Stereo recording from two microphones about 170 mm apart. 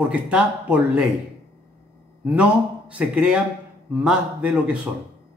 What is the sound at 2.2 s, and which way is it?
A man's voice, 10° right (ahead or behind).